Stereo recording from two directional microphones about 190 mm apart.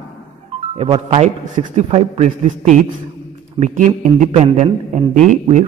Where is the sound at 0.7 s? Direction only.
30° right (ahead or behind).